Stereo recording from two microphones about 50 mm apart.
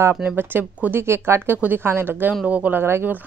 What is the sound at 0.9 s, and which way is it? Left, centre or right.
A woman's voice, right.